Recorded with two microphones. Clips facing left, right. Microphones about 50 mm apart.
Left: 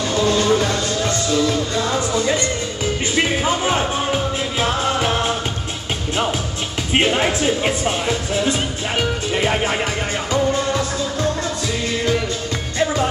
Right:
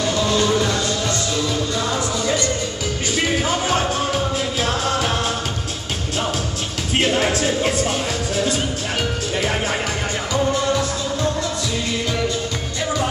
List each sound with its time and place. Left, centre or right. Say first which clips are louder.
0.0 s music: left 1 dB; left
6.9 s music: left 1 dB; left